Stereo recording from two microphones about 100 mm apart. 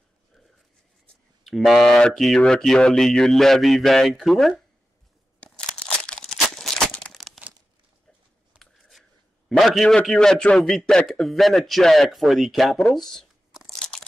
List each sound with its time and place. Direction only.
1.4 s a man's voice: centre (ahead or behind)
5.4 s crunch: 10° left (ahead or behind)
6.1 s a sound: 5° left (ahead or behind)
7.1 s crumpling: centre (ahead or behind)
8.5 s a sound: centre (ahead or behind)
9.5 s a man's voice: centre (ahead or behind)
13.7 s crunch: 5° left (ahead or behind)